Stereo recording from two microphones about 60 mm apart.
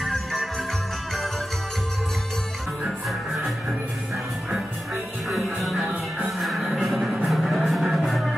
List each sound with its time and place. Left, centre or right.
0.0 s music: centre
5.3 s music: centre